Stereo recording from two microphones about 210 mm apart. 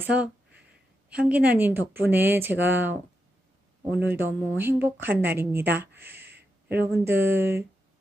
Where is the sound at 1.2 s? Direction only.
5° right (ahead or behind).